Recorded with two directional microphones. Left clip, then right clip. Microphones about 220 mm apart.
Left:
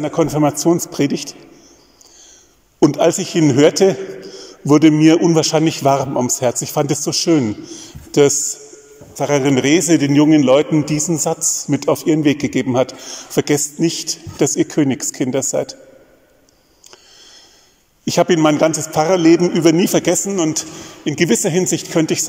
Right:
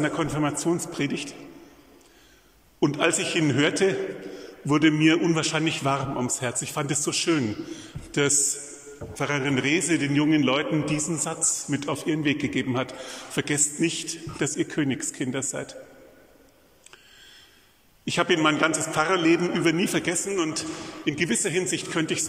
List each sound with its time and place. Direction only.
0.0 s a man's voice: 25° left (ahead or behind)
2.8 s a man's voice: 25° left (ahead or behind)
18.0 s a man's voice: 25° left (ahead or behind)